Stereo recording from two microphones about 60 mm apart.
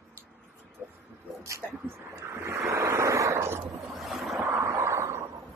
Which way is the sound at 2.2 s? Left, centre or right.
Right.